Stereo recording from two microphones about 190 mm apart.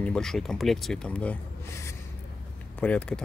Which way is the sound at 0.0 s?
5° left (ahead or behind).